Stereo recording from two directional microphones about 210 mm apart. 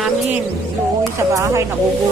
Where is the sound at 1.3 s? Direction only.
15° right (ahead or behind).